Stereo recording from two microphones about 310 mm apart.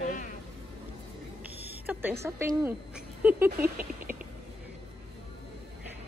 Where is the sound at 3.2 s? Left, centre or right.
Centre.